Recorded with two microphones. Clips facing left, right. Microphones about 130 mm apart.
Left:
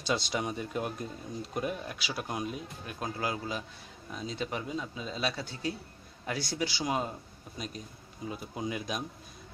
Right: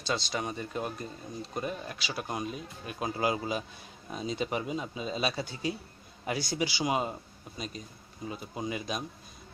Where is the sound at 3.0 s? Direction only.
15° right (ahead or behind).